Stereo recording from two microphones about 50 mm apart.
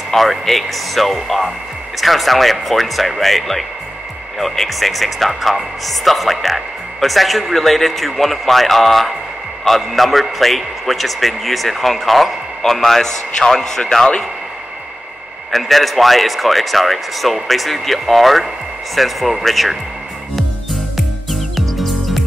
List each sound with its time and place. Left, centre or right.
0.1 s speech: centre
15.5 s speech: centre
20.9 s music: centre